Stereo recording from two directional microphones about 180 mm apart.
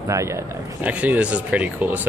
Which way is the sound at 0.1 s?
15° right (ahead or behind).